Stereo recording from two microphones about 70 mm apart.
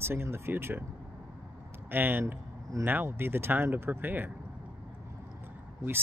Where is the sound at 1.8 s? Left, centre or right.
Right.